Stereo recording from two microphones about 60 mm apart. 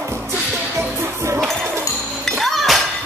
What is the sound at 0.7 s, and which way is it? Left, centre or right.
Music, right.